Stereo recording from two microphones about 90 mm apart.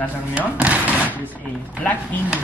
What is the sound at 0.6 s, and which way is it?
Speech, 15° right (ahead or behind).